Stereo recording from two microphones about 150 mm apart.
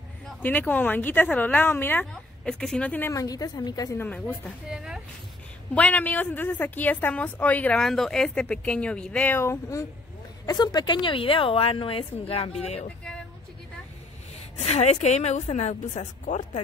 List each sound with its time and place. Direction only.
0.4 s a woman's voice: 10° left (ahead or behind)
4.6 s speech: 5° right (ahead or behind)
5.8 s a woman's voice: 10° left (ahead or behind); by 12.8 s 45° left (ahead or behind)
14.6 s a woman's voice: 45° left (ahead or behind)